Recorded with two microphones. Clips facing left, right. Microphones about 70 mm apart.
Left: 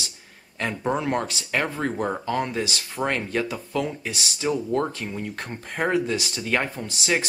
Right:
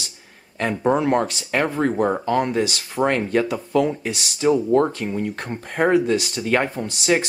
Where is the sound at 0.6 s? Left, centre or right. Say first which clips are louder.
Right 6 dB; right.